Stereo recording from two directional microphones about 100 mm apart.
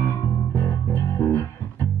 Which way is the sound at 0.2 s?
25° left (ahead or behind).